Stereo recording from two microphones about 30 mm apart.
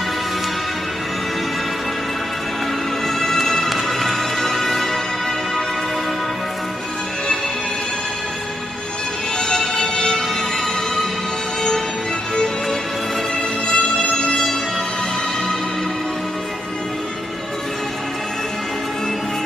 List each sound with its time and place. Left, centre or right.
3.2 s music: centre
9.4 s music: centre
13.7 s music: left